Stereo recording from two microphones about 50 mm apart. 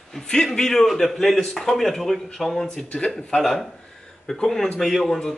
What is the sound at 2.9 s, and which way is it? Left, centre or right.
Speech, centre.